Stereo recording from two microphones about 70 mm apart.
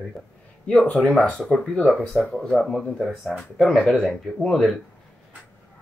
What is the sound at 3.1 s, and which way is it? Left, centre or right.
Speech, centre.